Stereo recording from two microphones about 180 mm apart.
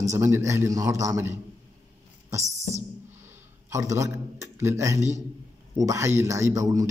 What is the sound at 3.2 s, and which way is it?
A man's voice, 15° right (ahead or behind).